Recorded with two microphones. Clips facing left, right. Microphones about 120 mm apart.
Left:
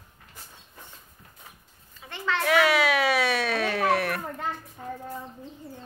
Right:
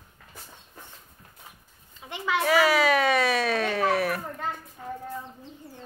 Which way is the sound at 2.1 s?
10° right (ahead or behind).